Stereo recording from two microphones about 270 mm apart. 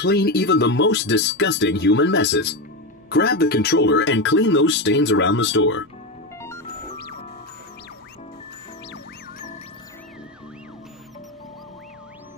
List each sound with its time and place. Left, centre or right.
0.0 s speech: left